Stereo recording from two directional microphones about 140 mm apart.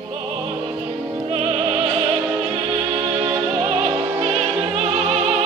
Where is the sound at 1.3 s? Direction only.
45° right (ahead or behind).